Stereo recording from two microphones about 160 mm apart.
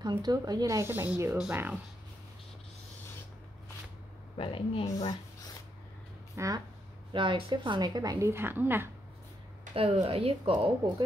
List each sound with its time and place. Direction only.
0.0 s a woman's voice: 25° right (ahead or behind); by 1.8 s 10° right (ahead or behind)
4.4 s speech: 35° left (ahead or behind)
4.9 s speech: 25° left (ahead or behind)
6.3 s speech: 20° right (ahead or behind)
7.1 s a woman's voice: 30° right (ahead or behind); by 8.9 s 15° right (ahead or behind)
9.8 s speech: 35° right (ahead or behind)